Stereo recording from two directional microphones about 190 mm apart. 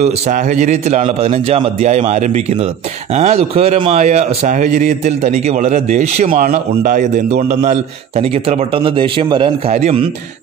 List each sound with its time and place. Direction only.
0.0 s a man's voice: 40° right (ahead or behind)